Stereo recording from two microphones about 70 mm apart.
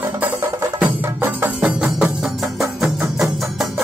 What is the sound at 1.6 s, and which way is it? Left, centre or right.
Music, centre.